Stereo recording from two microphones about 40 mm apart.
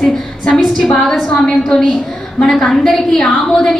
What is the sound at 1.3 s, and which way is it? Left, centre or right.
Speech, left.